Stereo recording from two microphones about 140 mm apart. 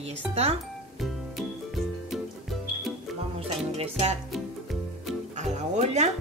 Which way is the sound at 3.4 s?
45° right (ahead or behind).